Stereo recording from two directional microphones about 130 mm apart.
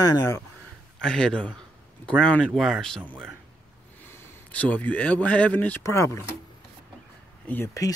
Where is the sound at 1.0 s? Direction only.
5° left (ahead or behind).